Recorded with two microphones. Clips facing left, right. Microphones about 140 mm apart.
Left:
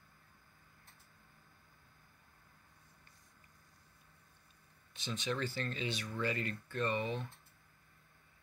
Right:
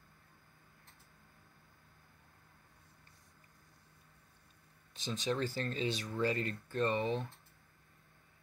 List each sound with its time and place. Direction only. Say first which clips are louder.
5.0 s speech: right 3 dB; 40° right (ahead or behind)